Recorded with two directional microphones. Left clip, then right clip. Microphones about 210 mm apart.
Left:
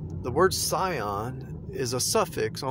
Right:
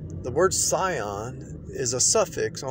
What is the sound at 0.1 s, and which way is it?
Speech, 20° left (ahead or behind).